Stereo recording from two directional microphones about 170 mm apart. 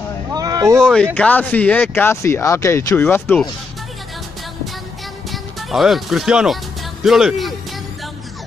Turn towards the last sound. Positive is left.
turn(degrees=0)  # may be behind; listen again after turning